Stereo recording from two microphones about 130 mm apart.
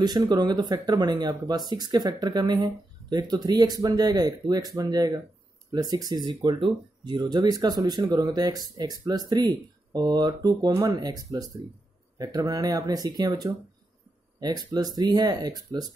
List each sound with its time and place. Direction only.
0.0 s speech: 30° right (ahead or behind)